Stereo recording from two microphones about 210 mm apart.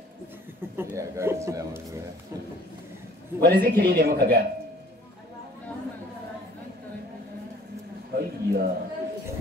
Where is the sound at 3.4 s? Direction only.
50° right (ahead or behind).